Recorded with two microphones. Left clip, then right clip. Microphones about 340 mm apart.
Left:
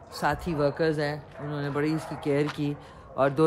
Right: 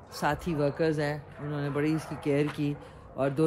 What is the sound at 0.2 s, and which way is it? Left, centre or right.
Speech, centre.